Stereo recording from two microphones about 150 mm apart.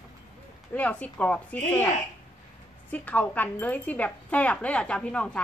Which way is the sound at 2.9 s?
10° left (ahead or behind).